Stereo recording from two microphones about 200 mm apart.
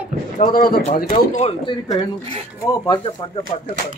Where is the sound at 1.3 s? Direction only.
30° left (ahead or behind).